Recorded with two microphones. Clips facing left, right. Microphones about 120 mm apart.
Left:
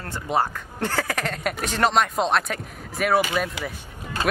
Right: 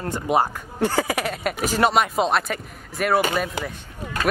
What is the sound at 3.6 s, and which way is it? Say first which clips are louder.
Speech: right 3 dB; 45° right (ahead or behind).